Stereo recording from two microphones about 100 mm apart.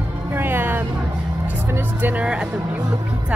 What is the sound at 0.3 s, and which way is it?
Music, 20° right (ahead or behind).